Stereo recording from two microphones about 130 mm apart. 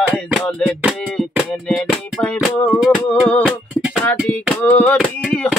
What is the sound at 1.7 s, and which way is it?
Music, centre (ahead or behind).